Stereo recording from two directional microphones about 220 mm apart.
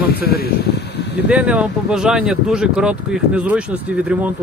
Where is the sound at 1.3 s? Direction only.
5° right (ahead or behind).